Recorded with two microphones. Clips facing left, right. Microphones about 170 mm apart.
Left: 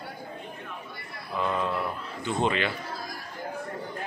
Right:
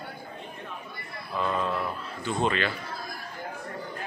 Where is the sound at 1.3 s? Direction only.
15° left (ahead or behind).